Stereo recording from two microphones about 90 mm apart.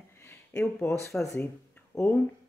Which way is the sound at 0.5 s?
20° left (ahead or behind).